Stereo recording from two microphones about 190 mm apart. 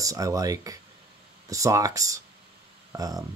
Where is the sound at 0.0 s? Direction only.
20° right (ahead or behind).